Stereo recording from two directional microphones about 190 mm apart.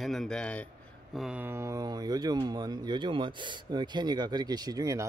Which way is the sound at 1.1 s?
5° right (ahead or behind).